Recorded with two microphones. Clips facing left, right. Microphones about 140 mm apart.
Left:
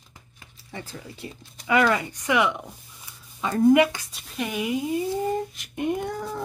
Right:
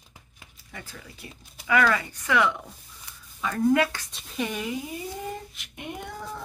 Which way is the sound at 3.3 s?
30° left (ahead or behind).